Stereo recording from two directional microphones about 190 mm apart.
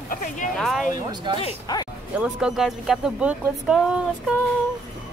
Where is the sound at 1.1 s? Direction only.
25° right (ahead or behind).